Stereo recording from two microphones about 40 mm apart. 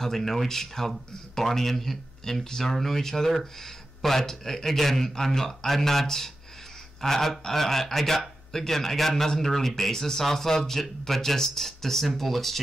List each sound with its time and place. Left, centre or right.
0.0 s speech: centre